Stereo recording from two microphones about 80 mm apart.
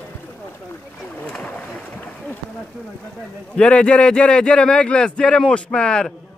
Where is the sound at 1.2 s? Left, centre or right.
Centre.